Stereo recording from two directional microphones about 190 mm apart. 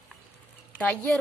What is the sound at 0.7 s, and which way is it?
Speech, 5° left (ahead or behind).